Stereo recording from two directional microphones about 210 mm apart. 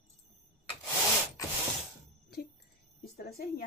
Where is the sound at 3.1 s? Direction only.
45° left (ahead or behind).